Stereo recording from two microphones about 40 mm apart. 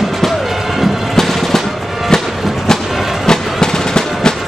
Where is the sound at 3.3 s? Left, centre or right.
Centre.